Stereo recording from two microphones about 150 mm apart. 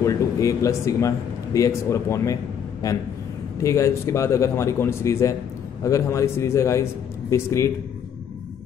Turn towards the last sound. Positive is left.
turn(degrees=20)  # may be behind; listen again after turning